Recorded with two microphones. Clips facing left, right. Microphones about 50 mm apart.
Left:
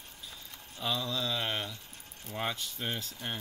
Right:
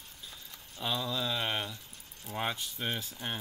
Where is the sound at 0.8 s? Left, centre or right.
Centre.